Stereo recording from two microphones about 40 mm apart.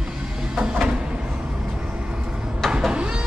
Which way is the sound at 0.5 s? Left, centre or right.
Right.